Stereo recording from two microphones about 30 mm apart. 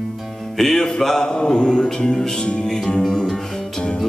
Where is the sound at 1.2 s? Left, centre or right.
Left.